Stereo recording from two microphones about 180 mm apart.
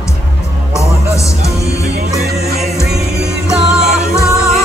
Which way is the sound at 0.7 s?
15° left (ahead or behind).